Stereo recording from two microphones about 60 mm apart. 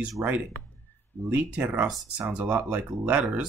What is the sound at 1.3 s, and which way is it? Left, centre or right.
Speech, right.